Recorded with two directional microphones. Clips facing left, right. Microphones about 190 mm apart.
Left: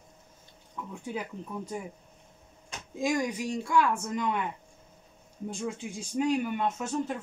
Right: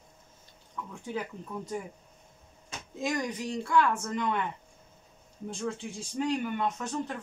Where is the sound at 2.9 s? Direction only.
10° left (ahead or behind).